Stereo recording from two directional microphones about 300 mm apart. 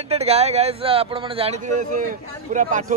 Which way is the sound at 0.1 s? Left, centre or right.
Right.